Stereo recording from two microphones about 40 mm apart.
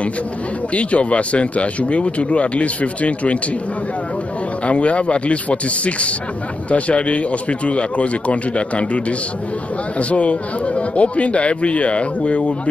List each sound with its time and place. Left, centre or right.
0.7 s speech: left
4.6 s speech: left